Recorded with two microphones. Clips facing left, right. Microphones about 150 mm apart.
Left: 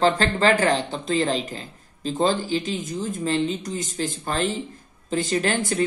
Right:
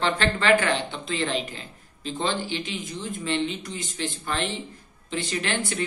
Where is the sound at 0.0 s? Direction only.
35° left (ahead or behind).